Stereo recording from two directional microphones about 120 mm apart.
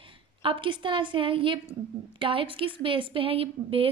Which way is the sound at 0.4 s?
45° right (ahead or behind).